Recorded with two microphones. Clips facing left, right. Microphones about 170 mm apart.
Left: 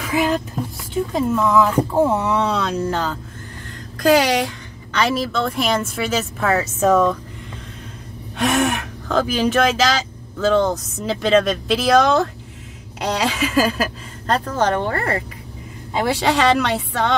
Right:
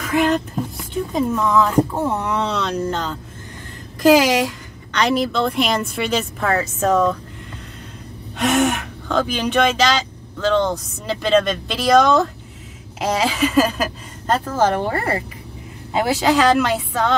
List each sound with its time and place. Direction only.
0.0 s speech: 5° left (ahead or behind)
8.4 s speech: centre (ahead or behind)
16.1 s speech: centre (ahead or behind)